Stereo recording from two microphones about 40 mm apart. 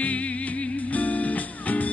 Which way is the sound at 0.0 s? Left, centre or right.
Left.